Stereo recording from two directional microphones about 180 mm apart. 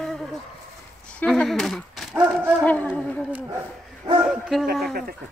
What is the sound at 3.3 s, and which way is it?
Speech, 10° right (ahead or behind).